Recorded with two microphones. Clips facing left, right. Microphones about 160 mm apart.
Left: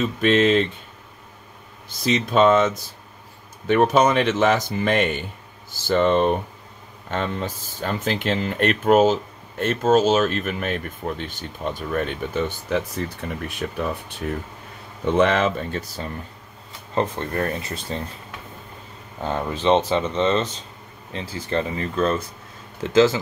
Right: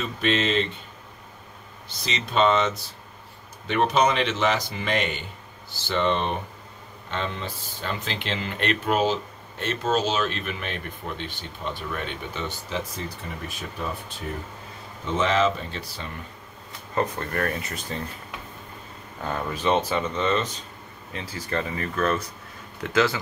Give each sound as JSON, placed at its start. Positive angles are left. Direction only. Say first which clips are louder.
{"t": 0.2, "sound": "speech", "louder": "left 6 dB", "side_deg": 50}
{"t": 1.9, "sound": "speech", "louder": "left 10 dB", "side_deg": 50}
{"t": 15.1, "sound": "speech", "louder": "left 3 dB", "side_deg": 55}
{"t": 16.9, "sound": "speech", "louder": "left 3 dB", "side_deg": 30}
{"t": 19.2, "sound": "speech", "louder": "left 4 dB", "side_deg": 25}